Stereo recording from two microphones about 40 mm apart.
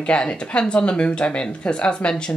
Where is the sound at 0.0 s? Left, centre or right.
Left.